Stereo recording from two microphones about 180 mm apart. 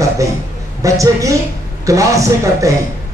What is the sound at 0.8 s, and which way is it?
A woman's voice, 20° right (ahead or behind).